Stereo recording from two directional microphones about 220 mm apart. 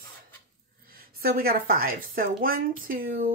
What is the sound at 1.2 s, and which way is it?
Speech, 45° right (ahead or behind).